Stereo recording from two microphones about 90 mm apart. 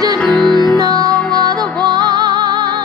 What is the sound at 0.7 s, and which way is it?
Music, 45° right (ahead or behind).